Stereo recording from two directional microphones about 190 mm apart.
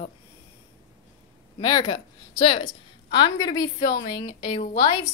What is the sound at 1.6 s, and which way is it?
A woman's voice, 25° left (ahead or behind).